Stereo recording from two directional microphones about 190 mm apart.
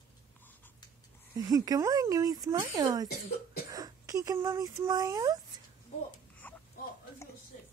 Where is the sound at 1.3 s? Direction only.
20° right (ahead or behind).